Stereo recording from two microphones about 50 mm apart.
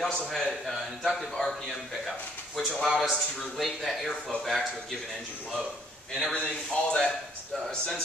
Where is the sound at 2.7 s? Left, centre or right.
Centre.